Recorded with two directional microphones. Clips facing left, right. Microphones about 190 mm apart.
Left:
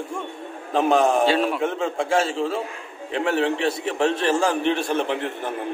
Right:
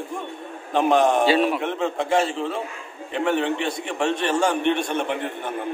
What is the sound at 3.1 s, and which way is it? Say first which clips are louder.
A man's voice: even; centre (ahead or behind).